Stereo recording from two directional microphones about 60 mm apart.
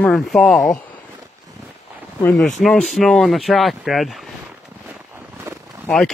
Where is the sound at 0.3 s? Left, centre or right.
Centre.